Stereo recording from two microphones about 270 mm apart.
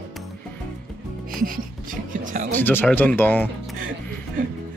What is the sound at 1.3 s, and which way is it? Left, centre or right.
Music, right.